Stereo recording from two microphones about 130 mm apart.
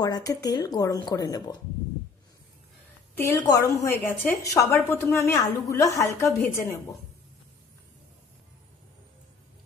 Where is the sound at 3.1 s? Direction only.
20° left (ahead or behind).